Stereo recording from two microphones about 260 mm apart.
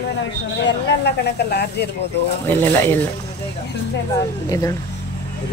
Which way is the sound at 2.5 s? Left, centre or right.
Centre.